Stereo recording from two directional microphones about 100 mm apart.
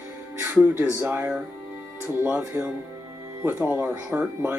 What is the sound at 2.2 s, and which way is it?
Speech, 20° right (ahead or behind).